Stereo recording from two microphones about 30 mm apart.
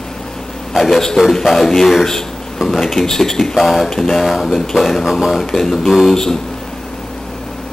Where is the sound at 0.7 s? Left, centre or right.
Centre.